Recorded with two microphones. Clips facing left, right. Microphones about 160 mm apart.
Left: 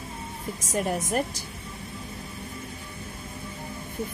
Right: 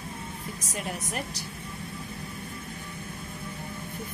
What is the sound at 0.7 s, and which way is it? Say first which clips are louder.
Speech: left 9 dB; 45° left (ahead or behind).